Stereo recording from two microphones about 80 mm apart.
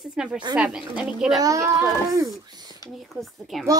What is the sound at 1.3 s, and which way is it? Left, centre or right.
Speech, right.